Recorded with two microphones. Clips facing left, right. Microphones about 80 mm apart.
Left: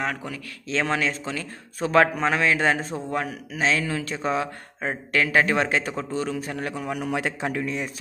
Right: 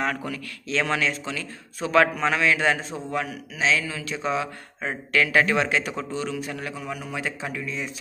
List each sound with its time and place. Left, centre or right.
0.0 s a man's voice: centre
0.7 s a man's voice: left
4.8 s a man's voice: left